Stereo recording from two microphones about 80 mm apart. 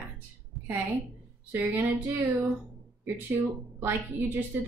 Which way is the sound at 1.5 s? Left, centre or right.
Right.